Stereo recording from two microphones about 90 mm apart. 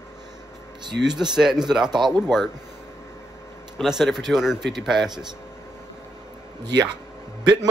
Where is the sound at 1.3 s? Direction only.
5° right (ahead or behind).